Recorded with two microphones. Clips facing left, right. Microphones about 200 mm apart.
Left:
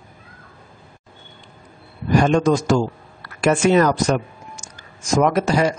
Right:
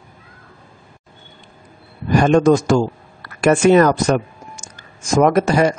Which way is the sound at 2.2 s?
50° right (ahead or behind).